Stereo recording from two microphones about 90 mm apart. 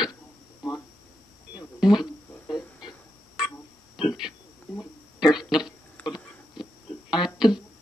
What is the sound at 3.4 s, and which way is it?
Music, 5° right (ahead or behind).